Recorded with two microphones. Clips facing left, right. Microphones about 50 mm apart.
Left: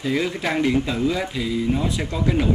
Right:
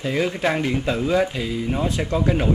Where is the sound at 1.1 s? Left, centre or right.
Right.